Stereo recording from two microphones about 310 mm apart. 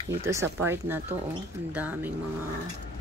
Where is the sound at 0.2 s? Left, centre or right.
Centre.